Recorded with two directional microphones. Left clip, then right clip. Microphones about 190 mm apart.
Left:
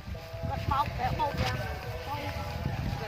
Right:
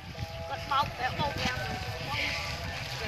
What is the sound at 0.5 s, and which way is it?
Vehicle, 55° left (ahead or behind).